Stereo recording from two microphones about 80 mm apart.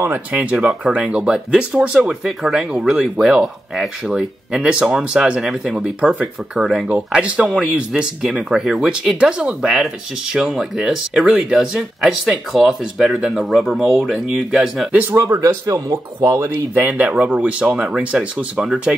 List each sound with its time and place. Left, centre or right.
0.0 s speech: right
15.4 s speech: right; by 18.9 s centre